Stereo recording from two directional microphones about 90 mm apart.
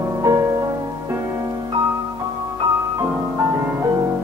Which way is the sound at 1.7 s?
45° right (ahead or behind).